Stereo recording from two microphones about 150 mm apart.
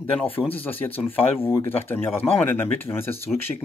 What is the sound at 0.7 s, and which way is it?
Speech, 15° left (ahead or behind).